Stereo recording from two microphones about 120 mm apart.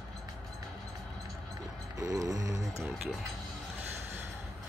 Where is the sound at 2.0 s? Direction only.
30° right (ahead or behind).